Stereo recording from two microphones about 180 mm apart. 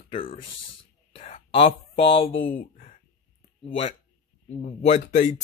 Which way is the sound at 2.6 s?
45° left (ahead or behind).